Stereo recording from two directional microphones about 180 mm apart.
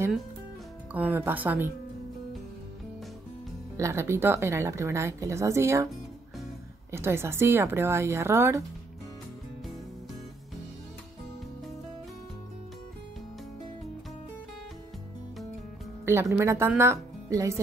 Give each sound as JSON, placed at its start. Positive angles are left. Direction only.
{"t": 0.9, "sound": "speech", "side_deg": -10}
{"t": 3.7, "sound": "speech", "side_deg": -15}
{"t": 6.9, "sound": "speech", "side_deg": -15}
{"t": 16.1, "sound": "speech", "side_deg": -15}